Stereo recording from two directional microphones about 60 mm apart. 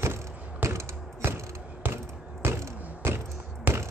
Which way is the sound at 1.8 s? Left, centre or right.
Right.